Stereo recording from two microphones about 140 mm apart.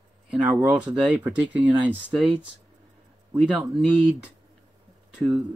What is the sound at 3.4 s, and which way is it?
Speech, 5° right (ahead or behind).